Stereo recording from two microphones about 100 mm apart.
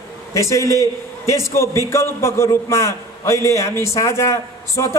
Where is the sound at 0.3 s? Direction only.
30° left (ahead or behind).